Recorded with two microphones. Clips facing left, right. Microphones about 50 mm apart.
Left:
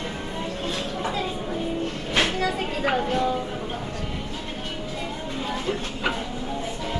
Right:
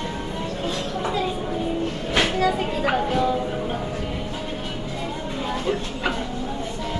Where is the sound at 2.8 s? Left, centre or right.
Centre.